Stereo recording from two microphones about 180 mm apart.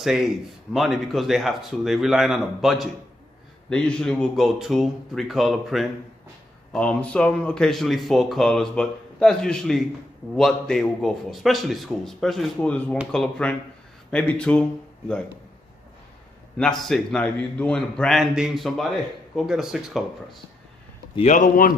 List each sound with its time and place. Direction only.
0.0 s speech: centre (ahead or behind)
16.5 s speech: 5° left (ahead or behind)
21.2 s a man's voice: 45° left (ahead or behind)